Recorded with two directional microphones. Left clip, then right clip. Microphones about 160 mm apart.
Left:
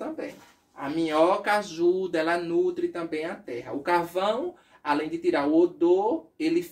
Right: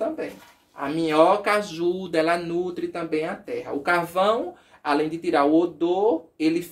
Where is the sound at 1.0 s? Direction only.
35° right (ahead or behind).